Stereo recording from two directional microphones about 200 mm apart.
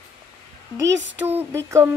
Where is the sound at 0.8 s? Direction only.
65° right (ahead or behind).